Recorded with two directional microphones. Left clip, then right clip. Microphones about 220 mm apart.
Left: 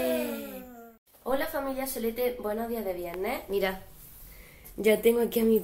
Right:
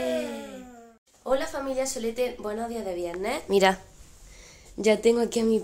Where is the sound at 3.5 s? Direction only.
50° right (ahead or behind).